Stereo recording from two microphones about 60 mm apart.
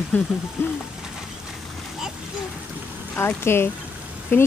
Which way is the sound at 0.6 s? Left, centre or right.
Left.